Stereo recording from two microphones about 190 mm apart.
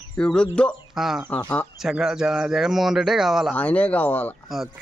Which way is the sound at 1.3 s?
10° left (ahead or behind).